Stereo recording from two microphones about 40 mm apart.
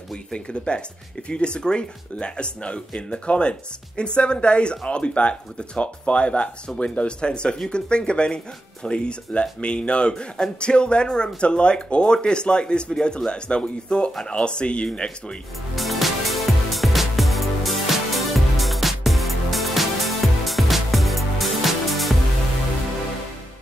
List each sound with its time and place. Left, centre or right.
0.3 s speech: left
15.7 s music: centre